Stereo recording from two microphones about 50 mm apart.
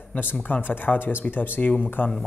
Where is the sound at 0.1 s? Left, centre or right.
Left.